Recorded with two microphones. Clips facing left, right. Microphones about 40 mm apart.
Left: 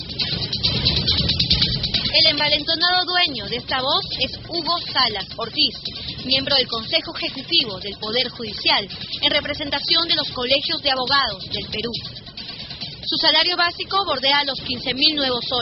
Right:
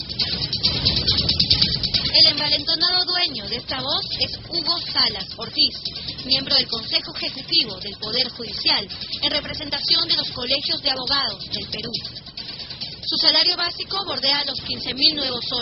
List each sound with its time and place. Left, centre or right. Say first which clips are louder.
0.5 s music: left 2 dB; left
3.4 s speech: left 5 dB; left
6.4 s speech: left 3 dB; centre
6.7 s speech: left 3 dB; left
11.0 s speech: left 8 dB; left
13.1 s a woman's voice: left 2 dB; left
14.2 s speech: left 4 dB; left